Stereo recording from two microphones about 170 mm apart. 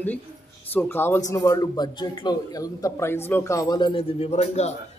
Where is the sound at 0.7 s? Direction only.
15° left (ahead or behind).